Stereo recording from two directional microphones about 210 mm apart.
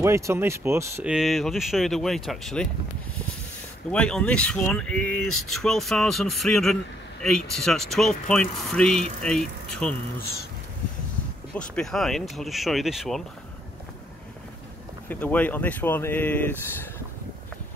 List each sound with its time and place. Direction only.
0.0 s speech: 10° right (ahead or behind); by 2.7 s 5° left (ahead or behind)
3.9 s speech: 5° left (ahead or behind)
11.5 s speech: 5° left (ahead or behind)
15.0 s speech: 10° left (ahead or behind)